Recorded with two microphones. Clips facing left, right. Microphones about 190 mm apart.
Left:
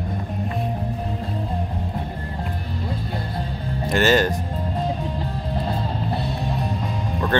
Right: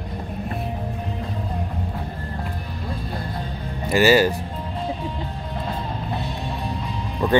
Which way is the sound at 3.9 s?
10° right (ahead or behind).